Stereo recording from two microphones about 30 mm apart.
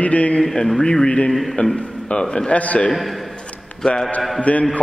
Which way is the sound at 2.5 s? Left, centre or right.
Left.